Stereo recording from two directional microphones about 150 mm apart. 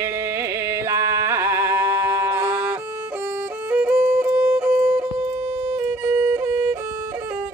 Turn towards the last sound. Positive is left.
turn(degrees=-5)  # may be behind; listen again after turning